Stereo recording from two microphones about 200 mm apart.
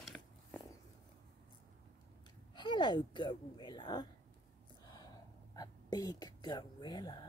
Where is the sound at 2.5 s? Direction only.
20° left (ahead or behind).